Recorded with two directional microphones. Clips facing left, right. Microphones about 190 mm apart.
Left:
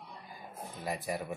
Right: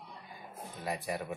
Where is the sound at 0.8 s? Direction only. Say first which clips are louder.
Even; centre (ahead or behind).